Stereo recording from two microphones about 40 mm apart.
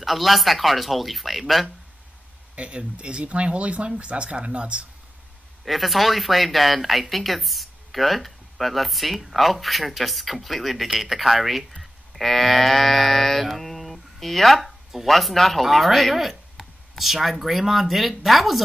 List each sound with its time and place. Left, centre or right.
0.0 s speech: centre
2.5 s speech: right
5.7 s speech: centre
11.8 s a sound: centre